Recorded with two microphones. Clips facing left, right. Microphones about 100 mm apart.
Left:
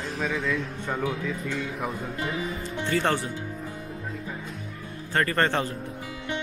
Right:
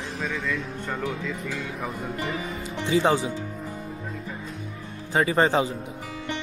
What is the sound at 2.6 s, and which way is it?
Speech, 15° right (ahead or behind).